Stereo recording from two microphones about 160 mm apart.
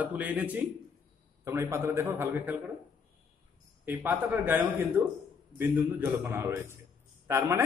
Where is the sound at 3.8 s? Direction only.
10° right (ahead or behind).